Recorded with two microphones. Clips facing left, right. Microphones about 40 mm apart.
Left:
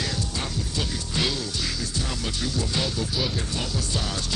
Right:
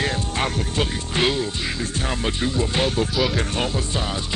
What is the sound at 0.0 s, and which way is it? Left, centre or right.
Music, right.